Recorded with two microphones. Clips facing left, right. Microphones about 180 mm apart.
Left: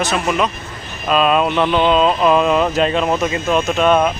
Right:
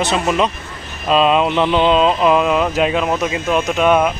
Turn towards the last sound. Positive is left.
turn(degrees=-10)  # may be behind; listen again after turning